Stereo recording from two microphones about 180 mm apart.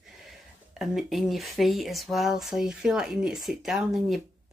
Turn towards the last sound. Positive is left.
turn(degrees=0)  # may be behind; listen again after turning